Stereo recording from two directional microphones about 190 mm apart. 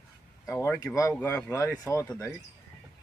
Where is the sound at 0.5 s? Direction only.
15° left (ahead or behind).